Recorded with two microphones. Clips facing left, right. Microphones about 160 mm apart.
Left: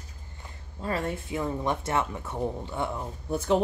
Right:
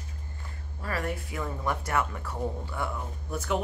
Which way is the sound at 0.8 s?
25° left (ahead or behind).